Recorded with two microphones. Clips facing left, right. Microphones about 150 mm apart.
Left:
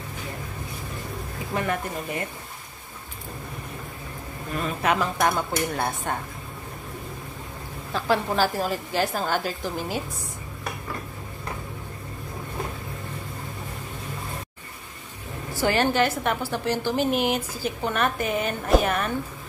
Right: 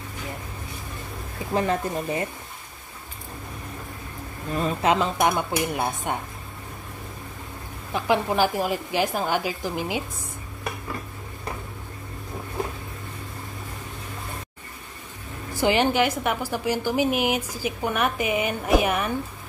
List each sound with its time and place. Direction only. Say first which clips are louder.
1.5 s speech: right 4 dB; 30° right (ahead or behind)
4.6 s a woman's voice: right 2 dB; 30° right (ahead or behind)
7.9 s a woman's voice: right 1 dB; 15° right (ahead or behind)
15.5 s a woman's voice: right 1 dB; 15° right (ahead or behind)